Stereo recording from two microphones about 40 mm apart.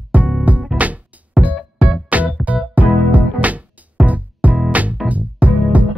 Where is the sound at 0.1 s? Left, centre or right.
Right.